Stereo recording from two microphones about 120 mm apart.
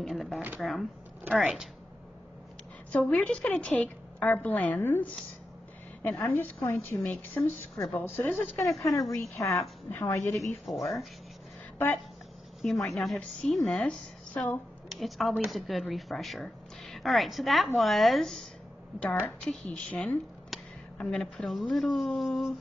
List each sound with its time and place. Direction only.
0.0 s a sound: centre (ahead or behind)
0.6 s a woman's voice: centre (ahead or behind)
2.9 s a woman's voice: 10° left (ahead or behind)
10.6 s speech: centre (ahead or behind)
12.6 s speech: centre (ahead or behind)
14.9 s a woman's voice: centre (ahead or behind)